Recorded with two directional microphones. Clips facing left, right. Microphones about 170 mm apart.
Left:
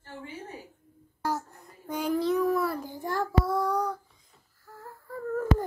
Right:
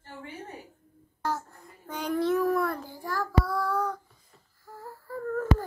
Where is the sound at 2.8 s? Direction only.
20° left (ahead or behind).